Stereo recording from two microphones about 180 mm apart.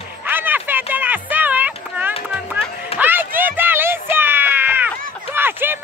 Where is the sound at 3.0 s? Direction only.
10° right (ahead or behind).